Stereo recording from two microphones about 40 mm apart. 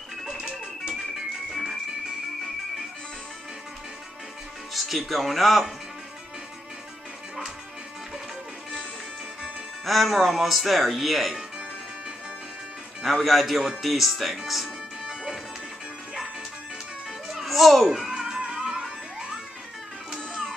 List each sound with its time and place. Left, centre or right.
0.2 s music: centre
4.7 s speech: centre
9.8 s speech: centre
13.0 s speech: centre
17.3 s music: centre
17.8 s music: centre